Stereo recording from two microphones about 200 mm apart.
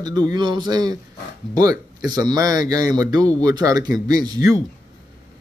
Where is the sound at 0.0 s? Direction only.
20° right (ahead or behind).